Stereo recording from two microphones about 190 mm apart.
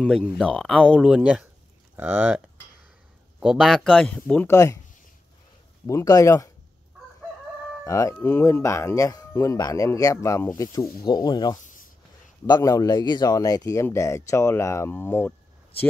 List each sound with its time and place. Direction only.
0.0 s speech: 5° left (ahead or behind)
5.9 s speech: 15° left (ahead or behind)
7.8 s speech: 15° left (ahead or behind)